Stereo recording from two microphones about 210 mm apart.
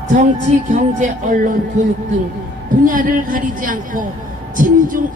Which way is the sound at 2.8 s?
40° right (ahead or behind).